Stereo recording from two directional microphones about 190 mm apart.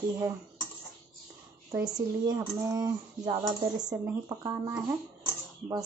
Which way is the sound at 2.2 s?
20° right (ahead or behind).